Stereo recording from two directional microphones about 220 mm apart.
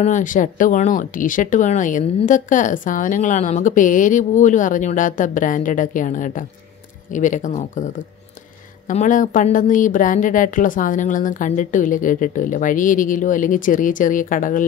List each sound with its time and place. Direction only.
0.0 s speech: 35° left (ahead or behind)